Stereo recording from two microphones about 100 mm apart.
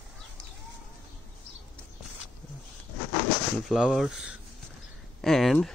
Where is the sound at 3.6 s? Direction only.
5° right (ahead or behind).